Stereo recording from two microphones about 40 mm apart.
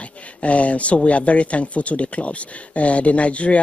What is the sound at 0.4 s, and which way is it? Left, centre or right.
Speech, left.